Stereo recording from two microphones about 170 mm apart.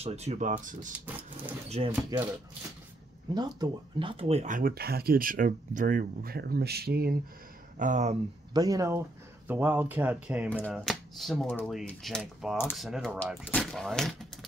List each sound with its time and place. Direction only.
0.0 s speech: 40° right (ahead or behind)
0.9 s speech: 10° right (ahead or behind)
3.3 s speech: 25° right (ahead or behind); by 7.2 s 65° right (ahead or behind)
7.8 s speech: 45° right (ahead or behind)
8.5 s speech: 20° right (ahead or behind); by 14.1 s centre (ahead or behind)